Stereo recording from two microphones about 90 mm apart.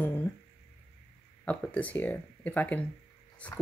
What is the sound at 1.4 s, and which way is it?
A woman's voice, 15° left (ahead or behind).